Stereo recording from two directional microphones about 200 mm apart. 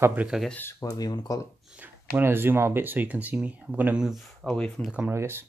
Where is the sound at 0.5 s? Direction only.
10° left (ahead or behind).